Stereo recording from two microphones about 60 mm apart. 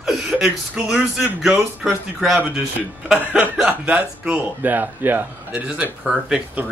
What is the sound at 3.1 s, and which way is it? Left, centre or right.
Speech, right.